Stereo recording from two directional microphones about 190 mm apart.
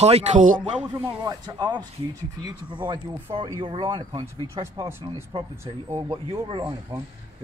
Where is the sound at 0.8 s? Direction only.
10° right (ahead or behind).